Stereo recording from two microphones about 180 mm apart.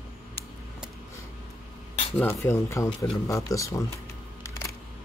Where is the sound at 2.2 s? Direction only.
15° left (ahead or behind).